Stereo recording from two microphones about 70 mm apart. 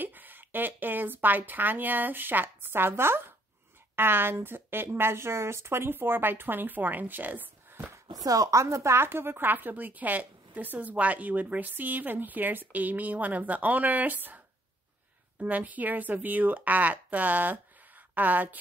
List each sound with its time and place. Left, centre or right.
0.0 s a woman's voice: right
8.1 s a woman's voice: right